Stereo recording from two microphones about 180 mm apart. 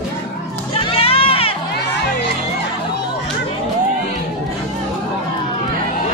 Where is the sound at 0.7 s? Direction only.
30° left (ahead or behind).